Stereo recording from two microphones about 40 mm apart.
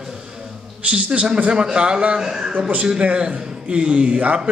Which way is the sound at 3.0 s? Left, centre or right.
Right.